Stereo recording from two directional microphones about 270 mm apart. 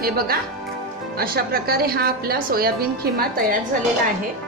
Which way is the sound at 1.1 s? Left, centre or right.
Right.